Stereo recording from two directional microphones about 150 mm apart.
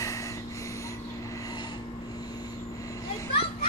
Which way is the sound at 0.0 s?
20° left (ahead or behind).